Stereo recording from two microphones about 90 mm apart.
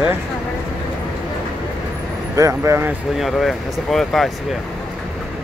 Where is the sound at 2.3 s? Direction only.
35° right (ahead or behind).